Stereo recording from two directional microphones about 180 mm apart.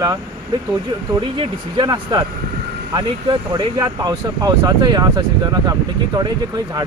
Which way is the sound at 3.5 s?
25° right (ahead or behind).